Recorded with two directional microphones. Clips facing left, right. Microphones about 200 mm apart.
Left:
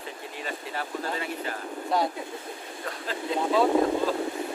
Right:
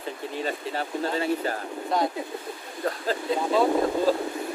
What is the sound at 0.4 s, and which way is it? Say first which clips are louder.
Speech: right 4 dB; 30° right (ahead or behind).